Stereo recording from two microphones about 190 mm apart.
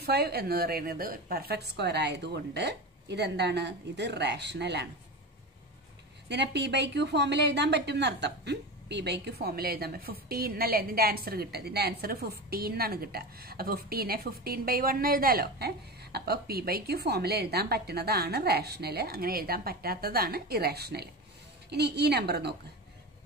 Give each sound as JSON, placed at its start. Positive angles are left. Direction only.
{"t": 0.0, "sound": "speech", "side_deg": -55}
{"t": 6.2, "sound": "speech", "side_deg": -65}